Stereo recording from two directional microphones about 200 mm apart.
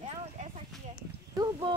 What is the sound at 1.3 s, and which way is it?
Speech, 20° right (ahead or behind).